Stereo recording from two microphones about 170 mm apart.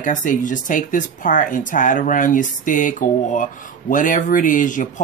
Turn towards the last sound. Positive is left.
turn(degrees=50)  # may be behind; listen again after turning